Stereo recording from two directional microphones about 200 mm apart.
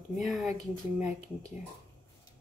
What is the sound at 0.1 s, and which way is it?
Speech, centre (ahead or behind).